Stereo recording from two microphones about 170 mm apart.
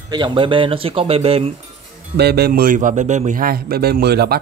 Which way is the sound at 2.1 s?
70° right (ahead or behind).